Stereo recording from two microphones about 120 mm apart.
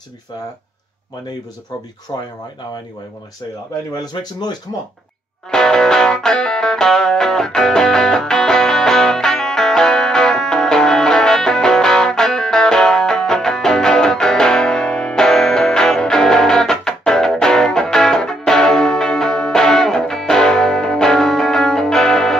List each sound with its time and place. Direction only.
2.1 s speech: 30° left (ahead or behind)
4.0 s speech: 35° left (ahead or behind)
5.5 s music: 5° left (ahead or behind)